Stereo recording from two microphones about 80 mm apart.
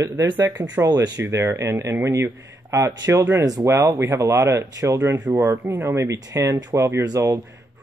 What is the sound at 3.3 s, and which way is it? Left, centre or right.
Speech, right.